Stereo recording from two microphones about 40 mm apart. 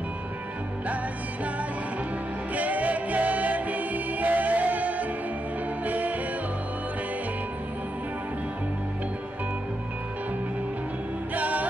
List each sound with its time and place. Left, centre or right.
2.5 s music: right
11.3 s music: right